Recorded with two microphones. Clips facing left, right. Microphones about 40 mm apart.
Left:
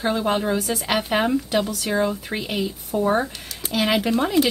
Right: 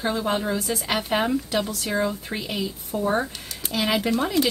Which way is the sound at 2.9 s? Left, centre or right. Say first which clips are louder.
Left 3 dB; centre.